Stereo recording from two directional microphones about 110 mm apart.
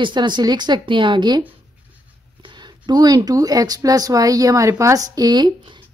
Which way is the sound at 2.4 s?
45° right (ahead or behind).